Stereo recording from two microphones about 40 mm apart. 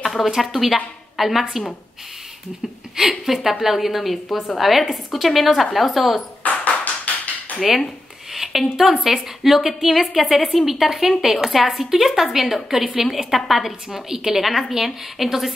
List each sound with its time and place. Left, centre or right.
0.0 s a sound: centre
0.3 s a woman's voice: centre
3.0 s a woman's voice: centre
6.4 s tap: left
8.3 s a woman's voice: centre